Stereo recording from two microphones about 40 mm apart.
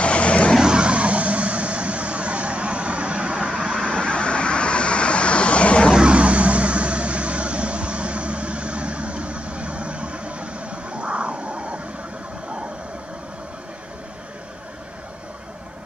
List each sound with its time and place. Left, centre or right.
0.0 s vehicle: left
0.6 s vehicle: right
3.8 s vehicle: left
5.9 s vehicle: right